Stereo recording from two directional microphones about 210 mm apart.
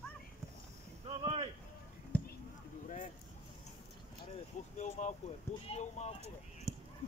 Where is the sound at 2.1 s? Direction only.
10° left (ahead or behind).